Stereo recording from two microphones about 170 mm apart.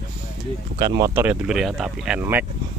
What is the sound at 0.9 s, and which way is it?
Speech, 15° right (ahead or behind).